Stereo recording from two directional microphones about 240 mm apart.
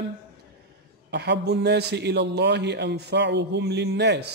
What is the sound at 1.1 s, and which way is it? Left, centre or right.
Speech, right.